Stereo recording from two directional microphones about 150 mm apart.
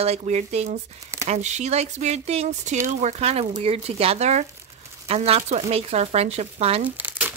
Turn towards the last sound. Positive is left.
turn(degrees=-10)  # may be behind; listen again after turning